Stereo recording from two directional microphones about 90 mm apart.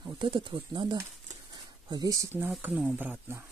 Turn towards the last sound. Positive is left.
turn(degrees=-25)  # may be behind; listen again after turning